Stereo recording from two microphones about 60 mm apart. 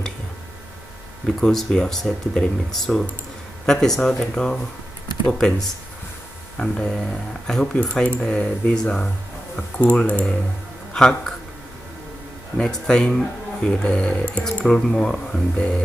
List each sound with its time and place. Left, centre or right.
1.2 s speech: centre; by 10.2 s left
10.9 s a man's voice: centre
12.5 s speech: centre